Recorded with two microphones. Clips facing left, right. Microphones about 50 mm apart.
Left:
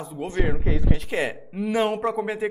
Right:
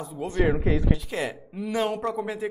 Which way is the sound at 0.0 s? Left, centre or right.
Left.